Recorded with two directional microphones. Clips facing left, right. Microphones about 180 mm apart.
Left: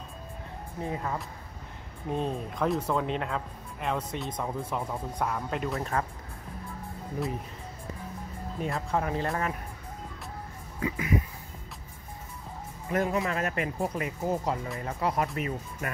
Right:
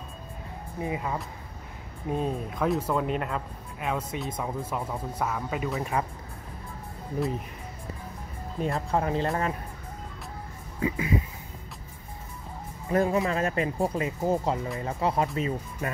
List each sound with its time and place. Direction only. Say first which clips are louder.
0.7 s speech: right 2 dB; 10° right (ahead or behind)
8.6 s speech: right 3 dB; 30° right (ahead or behind)
10.8 s speech: right 2 dB; 25° right (ahead or behind)
12.9 s speech: right 3 dB; 30° right (ahead or behind)